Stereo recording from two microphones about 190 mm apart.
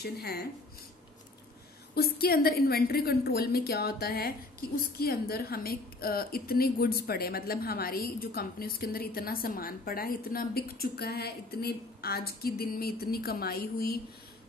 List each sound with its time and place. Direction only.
0.0 s a woman's voice: 55° left (ahead or behind)
2.0 s a woman's voice: 55° left (ahead or behind)